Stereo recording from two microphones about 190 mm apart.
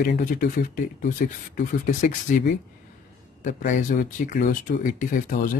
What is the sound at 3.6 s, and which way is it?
Speech, 45° left (ahead or behind).